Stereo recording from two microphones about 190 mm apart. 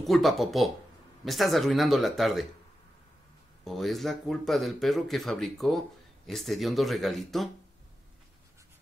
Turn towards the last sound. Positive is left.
turn(degrees=0)  # may be behind; listen again after turning